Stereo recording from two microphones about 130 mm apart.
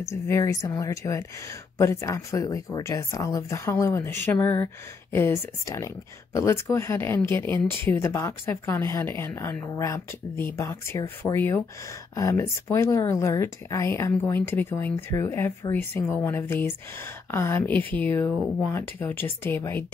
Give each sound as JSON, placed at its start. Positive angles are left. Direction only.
{"t": 0.1, "sound": "speech", "side_deg": 25}